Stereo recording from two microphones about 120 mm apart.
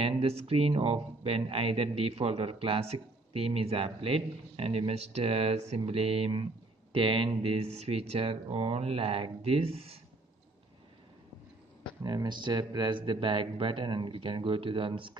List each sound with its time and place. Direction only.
0.2 s speech: 55° right (ahead or behind)
12.0 s speech: 35° right (ahead or behind)